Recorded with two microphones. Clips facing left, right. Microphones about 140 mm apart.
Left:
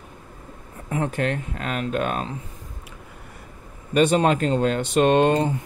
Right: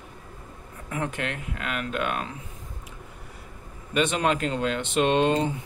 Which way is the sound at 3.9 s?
35° left (ahead or behind).